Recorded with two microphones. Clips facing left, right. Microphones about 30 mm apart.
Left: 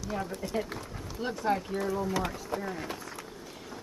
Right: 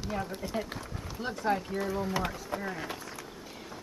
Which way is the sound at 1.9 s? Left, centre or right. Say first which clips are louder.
Left 1 dB; centre.